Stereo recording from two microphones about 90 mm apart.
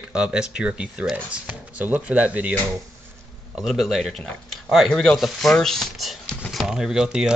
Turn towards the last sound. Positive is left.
turn(degrees=-10)  # may be behind; listen again after turning